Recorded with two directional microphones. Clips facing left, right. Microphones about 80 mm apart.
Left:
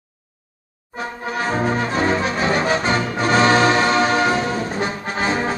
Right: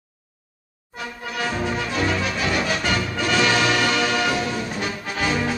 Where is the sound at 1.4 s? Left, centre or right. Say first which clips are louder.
Left 4 dB; left.